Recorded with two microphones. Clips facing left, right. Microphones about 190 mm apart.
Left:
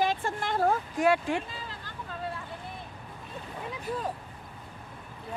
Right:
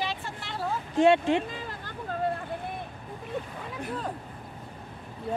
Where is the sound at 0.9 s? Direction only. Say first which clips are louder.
Right 4 dB; 25° right (ahead or behind).